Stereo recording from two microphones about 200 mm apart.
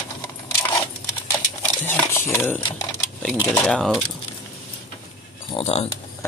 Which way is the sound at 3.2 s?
5° left (ahead or behind).